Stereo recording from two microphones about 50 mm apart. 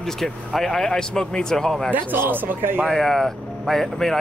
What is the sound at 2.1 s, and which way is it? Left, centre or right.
Speech, right.